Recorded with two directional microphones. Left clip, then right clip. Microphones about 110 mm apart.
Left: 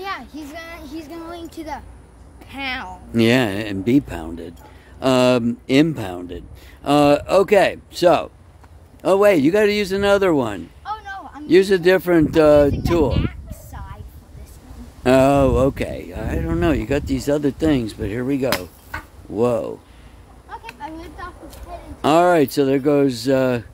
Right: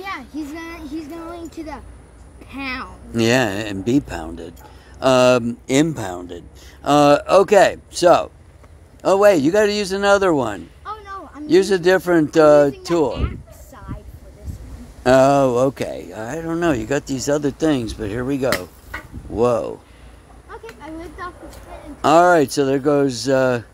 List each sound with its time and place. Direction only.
0.0 s a sound: 70° left (ahead or behind)
2.5 s speech: 50° left (ahead or behind); by 7.8 s 20° left (ahead or behind)
7.9 s speech: 40° left (ahead or behind)
15.0 s speech: 35° left (ahead or behind)
22.0 s speech: 35° left (ahead or behind)